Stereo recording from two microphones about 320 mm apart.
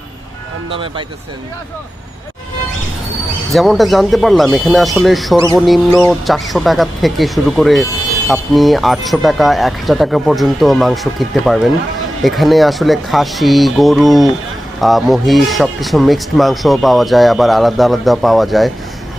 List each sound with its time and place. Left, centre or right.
0.7 s speech: centre
3.5 s speech: centre